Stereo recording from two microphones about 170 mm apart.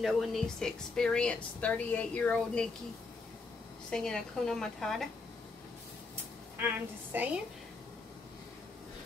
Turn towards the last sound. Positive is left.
turn(degrees=-10)  # may be behind; listen again after turning